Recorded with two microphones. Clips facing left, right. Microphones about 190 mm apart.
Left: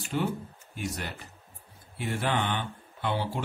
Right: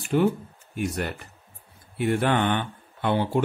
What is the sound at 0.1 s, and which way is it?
Speech, 45° right (ahead or behind).